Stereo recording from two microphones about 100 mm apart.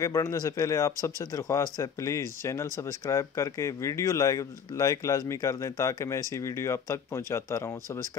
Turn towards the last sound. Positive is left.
turn(degrees=30)  # may be behind; listen again after turning